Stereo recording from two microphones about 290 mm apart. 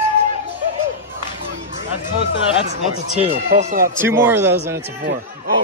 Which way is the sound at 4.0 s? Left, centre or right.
Centre.